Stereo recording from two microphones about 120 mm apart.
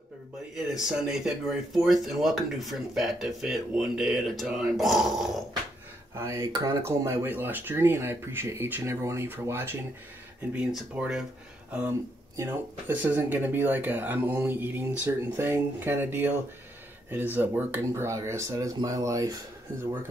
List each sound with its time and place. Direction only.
0.6 s speech: 5° right (ahead or behind)
6.1 s speech: 25° right (ahead or behind); by 11.2 s 5° right (ahead or behind)
12.8 s speech: 15° right (ahead or behind)